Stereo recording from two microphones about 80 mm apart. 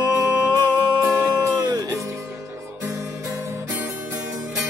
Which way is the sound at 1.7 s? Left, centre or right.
Right.